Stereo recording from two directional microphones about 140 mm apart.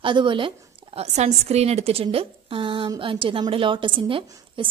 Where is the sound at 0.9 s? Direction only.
50° right (ahead or behind).